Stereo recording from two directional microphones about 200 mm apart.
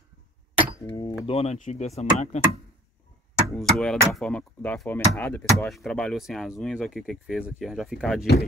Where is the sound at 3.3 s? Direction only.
5° left (ahead or behind).